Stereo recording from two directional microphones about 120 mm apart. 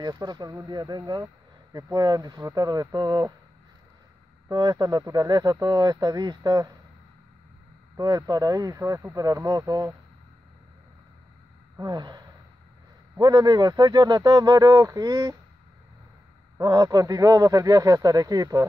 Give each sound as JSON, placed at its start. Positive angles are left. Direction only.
{"t": 0.0, "sound": "speech", "side_deg": -35}
{"t": 4.5, "sound": "speech", "side_deg": -35}
{"t": 8.0, "sound": "speech", "side_deg": -30}
{"t": 11.8, "sound": "speech", "side_deg": -35}
{"t": 16.5, "sound": "speech", "side_deg": -35}